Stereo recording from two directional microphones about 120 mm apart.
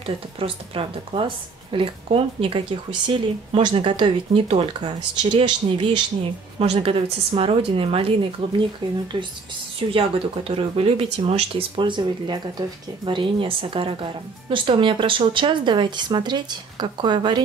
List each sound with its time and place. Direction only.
0.0 s speech: 50° right (ahead or behind)
6.6 s speech: 55° right (ahead or behind); by 17.4 s 40° right (ahead or behind)